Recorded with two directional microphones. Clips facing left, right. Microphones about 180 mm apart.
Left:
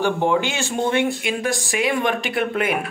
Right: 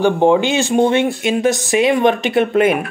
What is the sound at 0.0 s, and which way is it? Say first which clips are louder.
Speech: right 7 dB; 20° right (ahead or behind).